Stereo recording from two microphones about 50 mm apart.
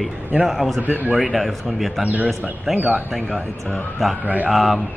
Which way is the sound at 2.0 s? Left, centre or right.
Right.